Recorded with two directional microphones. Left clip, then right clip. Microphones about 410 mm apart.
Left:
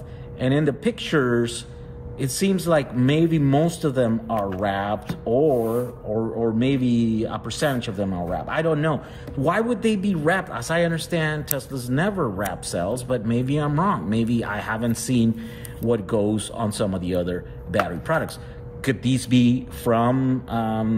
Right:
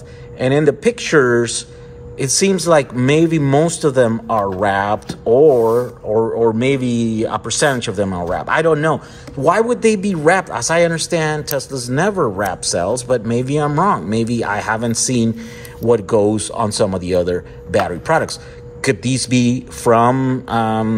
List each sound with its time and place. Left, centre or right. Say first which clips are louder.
0.4 s speech: right 8 dB; centre
16.3 s speech: right 9 dB; centre